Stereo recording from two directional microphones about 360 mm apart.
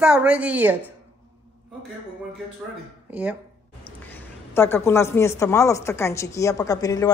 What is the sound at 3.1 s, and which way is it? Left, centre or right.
A woman's voice, centre.